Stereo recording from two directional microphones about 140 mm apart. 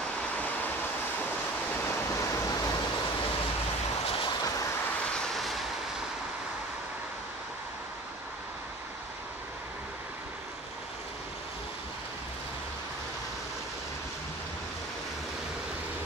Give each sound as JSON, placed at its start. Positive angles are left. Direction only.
{"t": 1.9, "sound": "vehicle", "side_deg": 20}
{"t": 5.3, "sound": "vehicle", "side_deg": 0}